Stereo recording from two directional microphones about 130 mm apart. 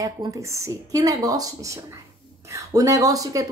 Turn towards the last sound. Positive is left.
turn(degrees=-25)  # may be behind; listen again after turning